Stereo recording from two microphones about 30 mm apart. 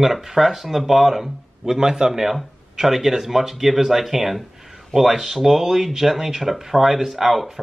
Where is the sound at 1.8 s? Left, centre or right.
Right.